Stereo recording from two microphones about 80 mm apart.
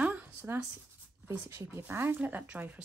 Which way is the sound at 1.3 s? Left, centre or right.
Right.